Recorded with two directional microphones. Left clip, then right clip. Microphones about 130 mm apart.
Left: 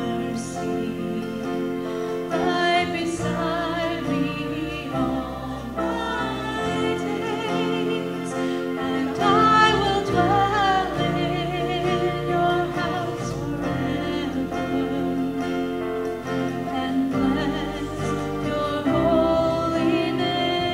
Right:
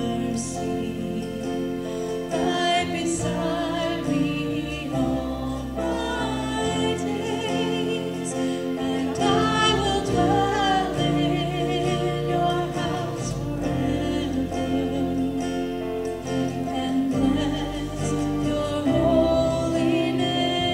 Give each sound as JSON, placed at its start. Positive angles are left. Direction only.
{"t": 2.3, "sound": "music", "side_deg": -30}
{"t": 7.5, "sound": "music", "side_deg": -30}
{"t": 8.9, "sound": "music", "side_deg": -30}
{"t": 17.1, "sound": "music", "side_deg": -25}
{"t": 18.9, "sound": "music", "side_deg": -30}